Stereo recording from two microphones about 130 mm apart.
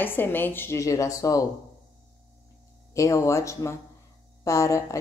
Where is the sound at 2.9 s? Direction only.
25° left (ahead or behind).